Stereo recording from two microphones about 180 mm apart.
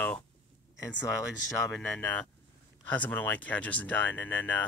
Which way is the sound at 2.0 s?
10° left (ahead or behind).